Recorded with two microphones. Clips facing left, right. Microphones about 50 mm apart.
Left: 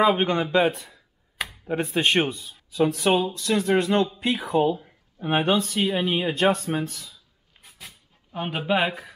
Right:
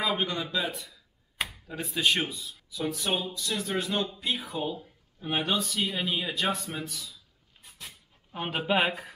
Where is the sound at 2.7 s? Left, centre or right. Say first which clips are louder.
Left 10 dB; left.